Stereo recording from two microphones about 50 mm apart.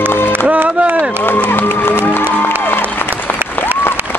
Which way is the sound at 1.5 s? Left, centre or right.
Left.